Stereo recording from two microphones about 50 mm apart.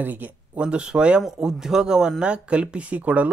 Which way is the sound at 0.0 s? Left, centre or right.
Right.